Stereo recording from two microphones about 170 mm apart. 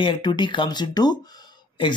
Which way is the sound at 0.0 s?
25° left (ahead or behind).